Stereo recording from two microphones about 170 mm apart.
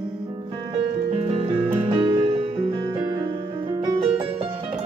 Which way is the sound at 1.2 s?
35° right (ahead or behind).